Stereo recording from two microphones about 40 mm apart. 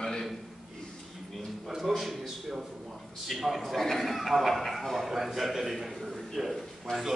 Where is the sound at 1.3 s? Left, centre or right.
Centre.